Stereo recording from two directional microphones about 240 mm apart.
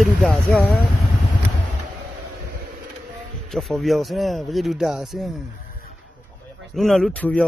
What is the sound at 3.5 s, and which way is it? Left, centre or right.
Speech, centre.